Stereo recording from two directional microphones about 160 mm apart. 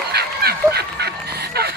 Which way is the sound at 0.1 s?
80° right.